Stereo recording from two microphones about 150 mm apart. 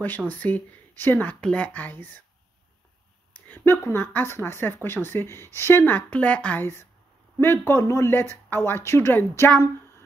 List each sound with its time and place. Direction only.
0.3 s speech: 10° left (ahead or behind)
3.3 s speech: 10° left (ahead or behind)